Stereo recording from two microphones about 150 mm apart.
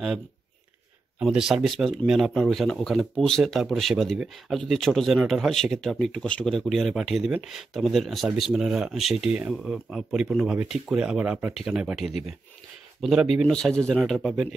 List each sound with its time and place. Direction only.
1.2 s speech: 5° right (ahead or behind)